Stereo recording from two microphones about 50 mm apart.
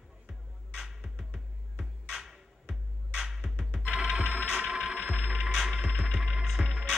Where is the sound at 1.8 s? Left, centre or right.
Centre; by 5.4 s right.